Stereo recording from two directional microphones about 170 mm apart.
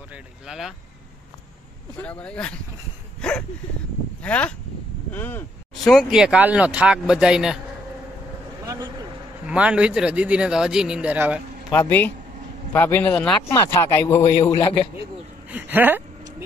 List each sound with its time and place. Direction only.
0.1 s vehicle: 5° right (ahead or behind)
2.0 s speech: 5° left (ahead or behind)
3.2 s a sound: 5° left (ahead or behind)
4.2 s speech: 10° left (ahead or behind)
5.9 s speech: centre (ahead or behind)
9.5 s speech: 5° right (ahead or behind)
11.7 s speech: 10° left (ahead or behind)
14.2 s a man's voice: 30° left (ahead or behind)
15.5 s a sound: 10° right (ahead or behind)